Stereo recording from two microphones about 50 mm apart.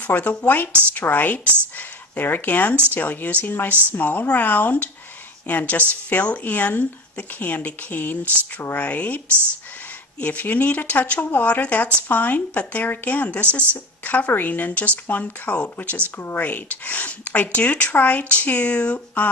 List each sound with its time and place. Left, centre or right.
0.0 s speech: left
10.2 s speech: left